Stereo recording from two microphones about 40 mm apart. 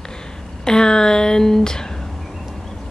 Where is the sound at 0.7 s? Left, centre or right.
Centre.